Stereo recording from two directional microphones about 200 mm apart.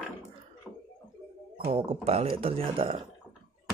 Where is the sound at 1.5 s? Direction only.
30° right (ahead or behind).